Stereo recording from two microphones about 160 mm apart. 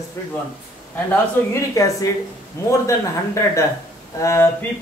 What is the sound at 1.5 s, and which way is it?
Speech, 20° left (ahead or behind).